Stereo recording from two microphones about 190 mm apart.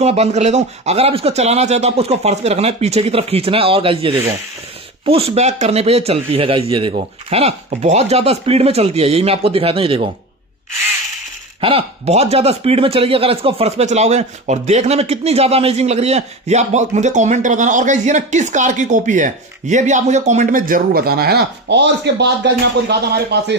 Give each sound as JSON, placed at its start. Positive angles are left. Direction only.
{"t": 0.0, "sound": "speech", "side_deg": -35}
{"t": 11.6, "sound": "speech", "side_deg": -30}